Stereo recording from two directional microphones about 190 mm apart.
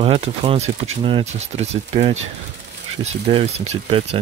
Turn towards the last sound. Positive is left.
turn(degrees=-30)  # may be behind; listen again after turning